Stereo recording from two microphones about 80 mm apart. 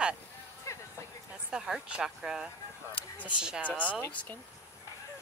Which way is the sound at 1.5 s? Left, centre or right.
Centre.